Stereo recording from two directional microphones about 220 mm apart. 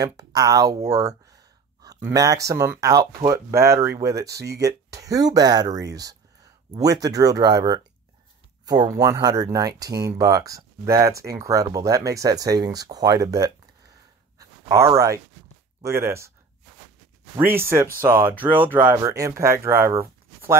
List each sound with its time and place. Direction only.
0.0 s speech: 15° right (ahead or behind)
8.9 s speech: 15° right (ahead or behind)
14.4 s a sound: 15° right (ahead or behind)
15.8 s speech: 10° right (ahead or behind)
17.4 s speech: 10° right (ahead or behind)